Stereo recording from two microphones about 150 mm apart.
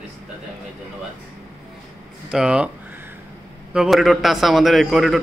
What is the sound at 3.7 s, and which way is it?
A man's voice, centre (ahead or behind).